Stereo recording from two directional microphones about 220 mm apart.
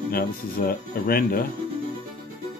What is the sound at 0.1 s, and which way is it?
Speech, 45° left (ahead or behind).